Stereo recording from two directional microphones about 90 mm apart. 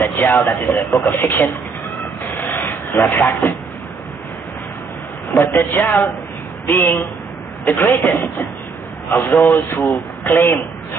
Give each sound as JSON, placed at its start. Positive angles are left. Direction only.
{"t": 0.0, "sound": "a man's voice", "side_deg": 30}
{"t": 2.5, "sound": "a sound", "side_deg": 30}
{"t": 3.3, "sound": "speech", "side_deg": 35}
{"t": 5.3, "sound": "a man's voice", "side_deg": 25}